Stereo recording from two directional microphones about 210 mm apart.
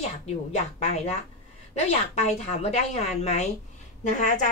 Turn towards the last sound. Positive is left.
turn(degrees=35)  # may be behind; listen again after turning